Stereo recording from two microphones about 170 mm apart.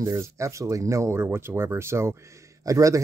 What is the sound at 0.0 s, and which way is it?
Speech, 15° right (ahead or behind).